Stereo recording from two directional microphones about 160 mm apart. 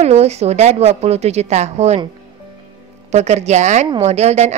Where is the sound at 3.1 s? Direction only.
45° right (ahead or behind).